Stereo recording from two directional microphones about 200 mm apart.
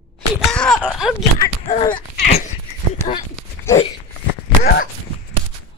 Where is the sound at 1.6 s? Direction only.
30° left (ahead or behind).